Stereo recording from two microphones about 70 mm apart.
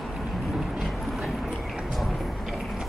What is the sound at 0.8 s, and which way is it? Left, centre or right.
Vehicle, centre.